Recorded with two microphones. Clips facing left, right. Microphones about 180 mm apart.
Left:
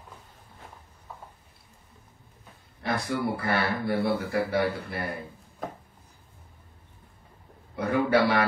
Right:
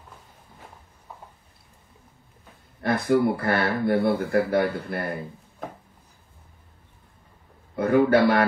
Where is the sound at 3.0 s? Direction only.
55° right (ahead or behind).